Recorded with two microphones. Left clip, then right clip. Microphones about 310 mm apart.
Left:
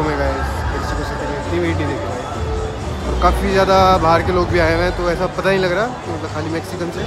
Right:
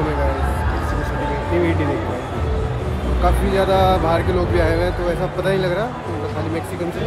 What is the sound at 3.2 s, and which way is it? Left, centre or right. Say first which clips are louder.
Speech: left 4 dB; centre.